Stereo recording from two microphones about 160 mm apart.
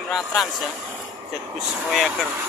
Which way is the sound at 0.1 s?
Centre (ahead or behind).